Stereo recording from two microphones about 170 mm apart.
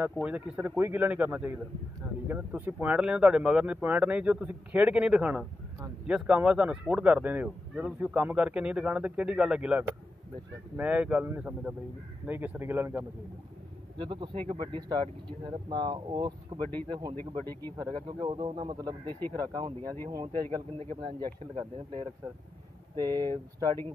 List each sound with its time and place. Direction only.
0.0 s a man's voice: 5° right (ahead or behind)
13.9 s speech: 30° right (ahead or behind)
17.7 s speech: 20° right (ahead or behind)
21.2 s speech: 30° right (ahead or behind)
23.2 s speech: 15° left (ahead or behind)